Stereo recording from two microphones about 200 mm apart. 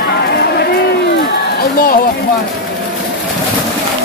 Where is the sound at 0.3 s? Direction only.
55° left (ahead or behind).